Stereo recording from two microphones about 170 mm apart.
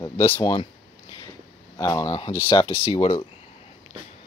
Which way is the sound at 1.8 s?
20° left (ahead or behind).